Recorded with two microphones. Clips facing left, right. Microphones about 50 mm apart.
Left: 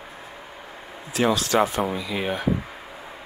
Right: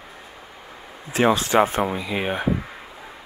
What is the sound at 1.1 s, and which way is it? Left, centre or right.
Speech, right.